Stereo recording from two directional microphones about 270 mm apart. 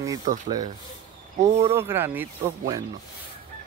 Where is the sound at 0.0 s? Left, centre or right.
Centre.